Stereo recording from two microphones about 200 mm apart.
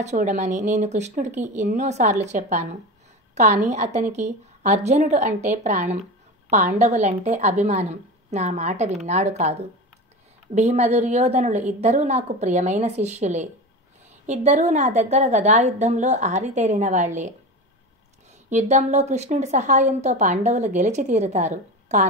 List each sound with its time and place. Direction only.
0.0 s a woman's voice: 35° right (ahead or behind)
18.5 s a woman's voice: 35° right (ahead or behind)